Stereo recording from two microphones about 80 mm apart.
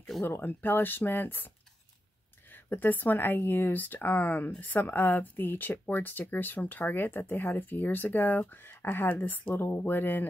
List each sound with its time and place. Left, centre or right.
0.2 s speech: left
2.5 s speech: left